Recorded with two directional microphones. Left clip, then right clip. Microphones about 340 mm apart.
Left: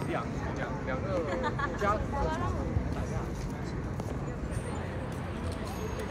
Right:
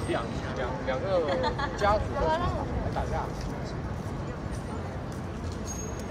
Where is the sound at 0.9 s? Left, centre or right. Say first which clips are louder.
Right 6 dB; right.